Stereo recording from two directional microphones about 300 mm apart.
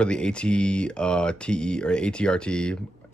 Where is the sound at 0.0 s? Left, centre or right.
Centre.